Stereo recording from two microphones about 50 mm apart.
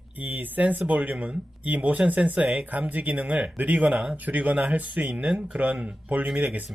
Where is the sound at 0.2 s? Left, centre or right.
Right.